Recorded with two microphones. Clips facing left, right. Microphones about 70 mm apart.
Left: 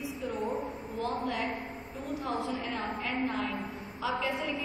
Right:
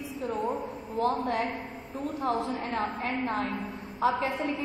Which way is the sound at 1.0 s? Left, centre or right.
Right.